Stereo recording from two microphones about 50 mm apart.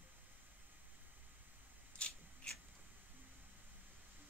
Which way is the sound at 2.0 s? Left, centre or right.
Left.